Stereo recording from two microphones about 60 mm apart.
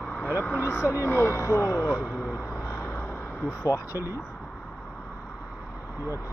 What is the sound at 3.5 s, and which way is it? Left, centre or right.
Speech, left.